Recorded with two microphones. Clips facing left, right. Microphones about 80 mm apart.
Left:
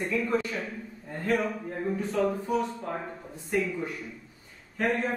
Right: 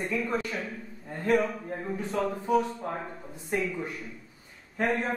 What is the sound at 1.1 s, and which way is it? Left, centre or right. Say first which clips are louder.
Speech: right 2 dB; centre.